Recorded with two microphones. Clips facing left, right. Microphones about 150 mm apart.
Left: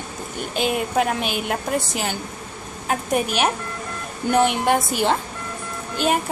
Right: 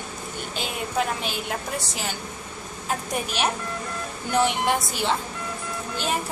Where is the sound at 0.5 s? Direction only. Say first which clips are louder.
Left 7 dB; 60° left (ahead or behind).